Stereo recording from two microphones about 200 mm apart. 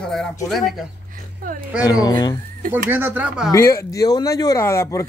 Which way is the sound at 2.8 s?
10° right (ahead or behind).